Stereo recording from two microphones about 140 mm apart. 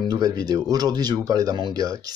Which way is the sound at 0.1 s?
30° right (ahead or behind).